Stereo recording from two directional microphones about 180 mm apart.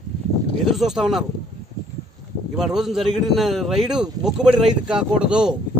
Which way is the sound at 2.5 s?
Centre (ahead or behind).